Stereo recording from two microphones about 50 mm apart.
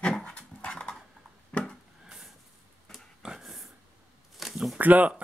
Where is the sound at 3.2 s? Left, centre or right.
Centre.